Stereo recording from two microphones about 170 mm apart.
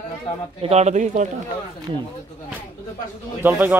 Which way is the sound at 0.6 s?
40° right (ahead or behind).